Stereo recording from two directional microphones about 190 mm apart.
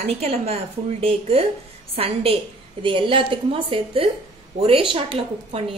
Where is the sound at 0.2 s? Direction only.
35° right (ahead or behind).